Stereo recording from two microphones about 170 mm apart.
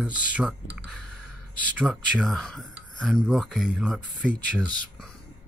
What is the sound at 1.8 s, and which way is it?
Speech, 5° right (ahead or behind).